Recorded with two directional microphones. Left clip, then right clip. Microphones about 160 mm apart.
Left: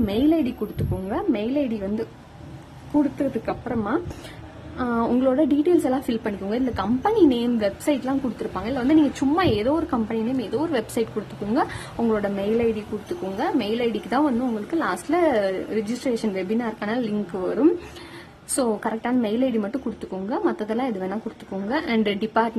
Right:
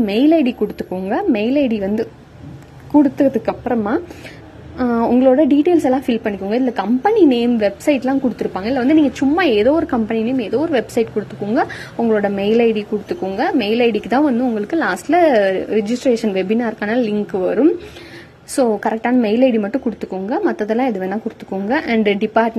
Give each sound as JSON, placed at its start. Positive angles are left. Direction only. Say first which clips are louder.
{"t": 0.0, "sound": "a woman's voice", "louder": "right 7 dB", "side_deg": -20}
{"t": 3.2, "sound": "a woman's voice", "louder": "right 9 dB", "side_deg": -25}
{"t": 12.1, "sound": "a woman's voice", "louder": "right 8 dB", "side_deg": -20}
{"t": 18.6, "sound": "a woman's voice", "louder": "right 8 dB", "side_deg": -15}